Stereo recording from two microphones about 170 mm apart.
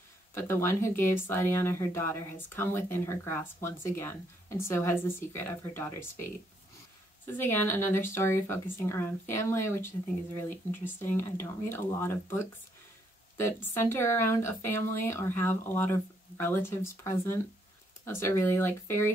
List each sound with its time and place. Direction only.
0.3 s speech: 15° left (ahead or behind)
7.3 s speech: 15° left (ahead or behind)